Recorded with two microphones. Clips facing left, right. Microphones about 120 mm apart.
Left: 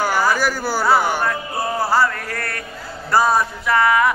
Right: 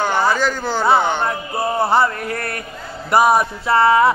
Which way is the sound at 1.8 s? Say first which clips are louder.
Right 2 dB; 25° right (ahead or behind).